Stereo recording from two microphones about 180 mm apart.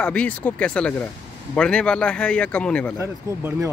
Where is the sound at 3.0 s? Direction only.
15° right (ahead or behind).